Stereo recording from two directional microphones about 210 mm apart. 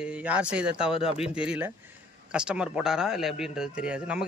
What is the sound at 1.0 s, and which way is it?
Speech, 25° left (ahead or behind).